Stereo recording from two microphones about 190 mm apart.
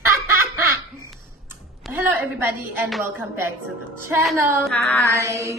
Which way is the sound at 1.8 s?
10° right (ahead or behind).